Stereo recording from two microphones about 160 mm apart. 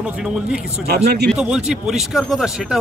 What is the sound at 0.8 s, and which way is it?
Speech, 85° right.